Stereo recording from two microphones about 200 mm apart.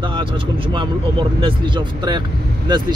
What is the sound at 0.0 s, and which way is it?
Vehicle, 25° right (ahead or behind).